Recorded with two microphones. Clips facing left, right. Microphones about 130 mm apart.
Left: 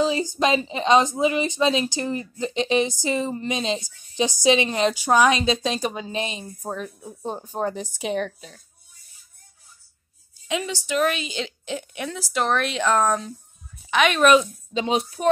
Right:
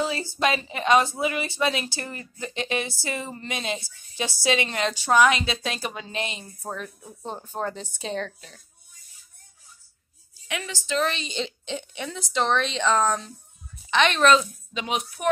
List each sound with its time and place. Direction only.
0.0 s speech: 15° left (ahead or behind)
10.5 s a woman's voice: 15° left (ahead or behind)
14.7 s speech: 30° left (ahead or behind)